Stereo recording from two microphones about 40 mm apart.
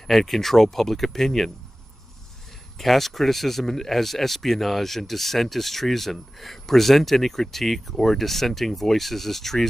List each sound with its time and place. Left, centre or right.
0.0 s speech: centre
2.8 s speech: centre